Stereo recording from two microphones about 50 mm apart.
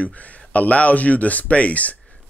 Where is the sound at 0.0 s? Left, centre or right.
Left.